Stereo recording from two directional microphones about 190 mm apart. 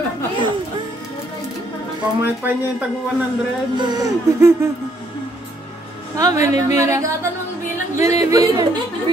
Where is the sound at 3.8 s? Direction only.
20° right (ahead or behind).